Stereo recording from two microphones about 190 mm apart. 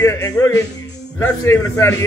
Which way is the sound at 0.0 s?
15° left (ahead or behind).